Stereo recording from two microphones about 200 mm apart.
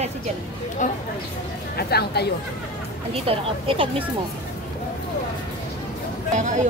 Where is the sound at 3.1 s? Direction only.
30° right (ahead or behind).